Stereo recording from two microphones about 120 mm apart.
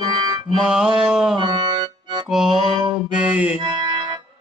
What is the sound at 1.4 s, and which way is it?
Music, 40° right (ahead or behind).